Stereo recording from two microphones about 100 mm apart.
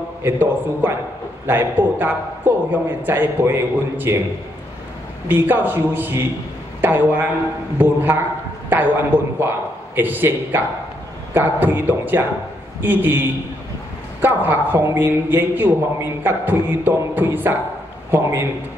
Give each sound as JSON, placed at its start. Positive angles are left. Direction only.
{"t": 0.2, "sound": "a man's voice", "side_deg": -20}
{"t": 5.3, "sound": "a man's voice", "side_deg": -20}
{"t": 8.6, "sound": "a sound", "side_deg": -20}
{"t": 9.9, "sound": "a man's voice", "side_deg": -20}